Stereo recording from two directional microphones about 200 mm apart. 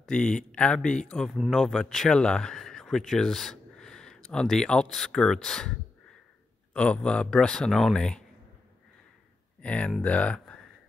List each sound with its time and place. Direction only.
0.1 s speech: 5° left (ahead or behind)
9.6 s speech: 5° left (ahead or behind)